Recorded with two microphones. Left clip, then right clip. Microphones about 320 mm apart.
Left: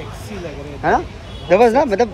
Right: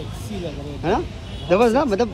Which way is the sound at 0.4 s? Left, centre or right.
Centre.